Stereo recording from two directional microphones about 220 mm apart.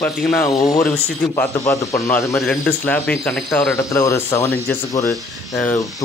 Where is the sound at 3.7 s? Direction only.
15° left (ahead or behind).